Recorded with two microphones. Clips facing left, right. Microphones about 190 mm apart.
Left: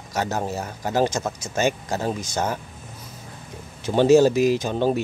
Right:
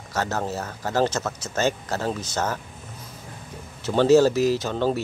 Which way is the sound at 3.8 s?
15° left (ahead or behind).